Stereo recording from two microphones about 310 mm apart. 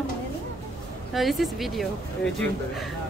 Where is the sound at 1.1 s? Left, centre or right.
Centre.